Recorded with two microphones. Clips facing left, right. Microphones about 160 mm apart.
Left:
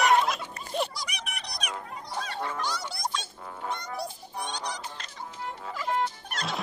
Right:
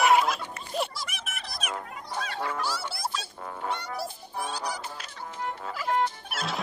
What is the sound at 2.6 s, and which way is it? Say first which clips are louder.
Music: right 1 dB; 5° right (ahead or behind).